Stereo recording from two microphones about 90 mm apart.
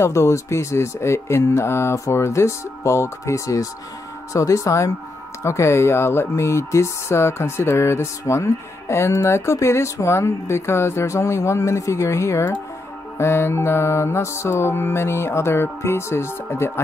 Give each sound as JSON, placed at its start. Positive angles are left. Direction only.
{"t": 0.0, "sound": "speech", "side_deg": 35}
{"t": 13.2, "sound": "mantra", "side_deg": 30}